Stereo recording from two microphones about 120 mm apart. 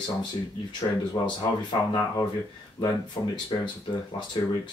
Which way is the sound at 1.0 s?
35° left (ahead or behind).